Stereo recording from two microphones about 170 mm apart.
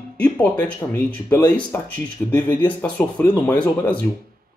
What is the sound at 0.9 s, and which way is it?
Speech, 20° left (ahead or behind).